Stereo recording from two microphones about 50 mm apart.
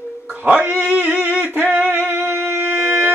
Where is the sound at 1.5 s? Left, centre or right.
Right.